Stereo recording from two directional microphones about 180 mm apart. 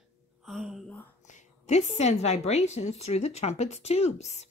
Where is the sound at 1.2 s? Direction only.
40° left (ahead or behind).